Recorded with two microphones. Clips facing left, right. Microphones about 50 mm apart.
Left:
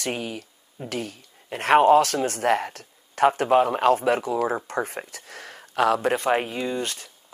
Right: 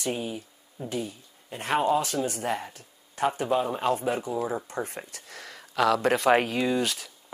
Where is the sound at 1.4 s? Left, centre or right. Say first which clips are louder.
Left 8 dB; left.